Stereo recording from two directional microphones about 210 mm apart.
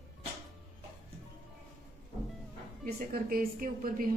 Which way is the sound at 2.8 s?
45° right (ahead or behind).